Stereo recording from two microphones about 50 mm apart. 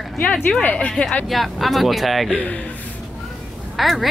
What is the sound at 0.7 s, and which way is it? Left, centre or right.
Speech, left.